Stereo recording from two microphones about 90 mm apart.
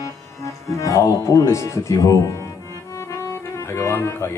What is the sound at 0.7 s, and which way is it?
Speech, 35° left (ahead or behind).